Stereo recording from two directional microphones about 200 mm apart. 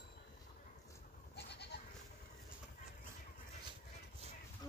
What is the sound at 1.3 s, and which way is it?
Goat, 55° left (ahead or behind).